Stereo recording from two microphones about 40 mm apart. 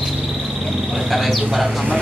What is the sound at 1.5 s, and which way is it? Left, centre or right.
Speech, centre.